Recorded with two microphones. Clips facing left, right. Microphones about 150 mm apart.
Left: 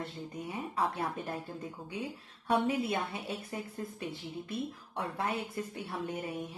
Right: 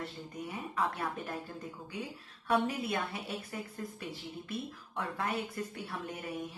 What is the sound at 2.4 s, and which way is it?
Speech, 25° left (ahead or behind).